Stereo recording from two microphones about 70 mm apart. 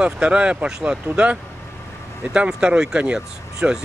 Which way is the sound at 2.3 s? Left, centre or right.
Centre.